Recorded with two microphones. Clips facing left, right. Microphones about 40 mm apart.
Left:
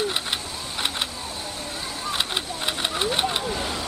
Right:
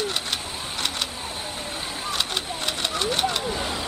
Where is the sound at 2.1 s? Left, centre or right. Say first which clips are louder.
Left 1 dB; centre.